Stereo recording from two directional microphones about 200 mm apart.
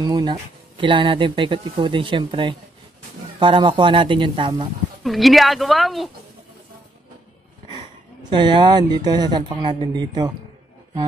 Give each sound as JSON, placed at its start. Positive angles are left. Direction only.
{"t": 0.0, "sound": "speech", "side_deg": -20}
{"t": 5.0, "sound": "speech", "side_deg": 0}
{"t": 7.7, "sound": "speech", "side_deg": -20}